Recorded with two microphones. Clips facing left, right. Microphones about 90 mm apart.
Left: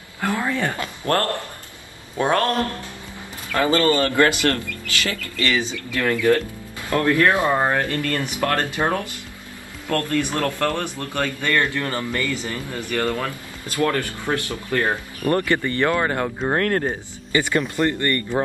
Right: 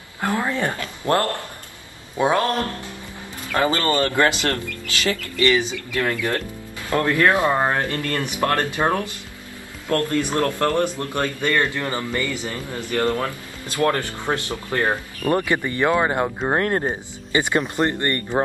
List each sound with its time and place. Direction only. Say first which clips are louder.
0.2 s speech: even; 20° right (ahead or behind)
2.1 s a man's voice: even; 5° right (ahead or behind)
3.5 s speech: left 2 dB; 20° right (ahead or behind)